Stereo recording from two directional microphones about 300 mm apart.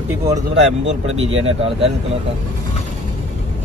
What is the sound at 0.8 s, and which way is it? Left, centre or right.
Speech, right.